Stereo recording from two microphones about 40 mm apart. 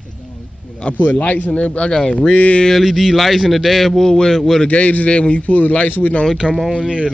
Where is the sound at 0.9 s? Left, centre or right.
Left.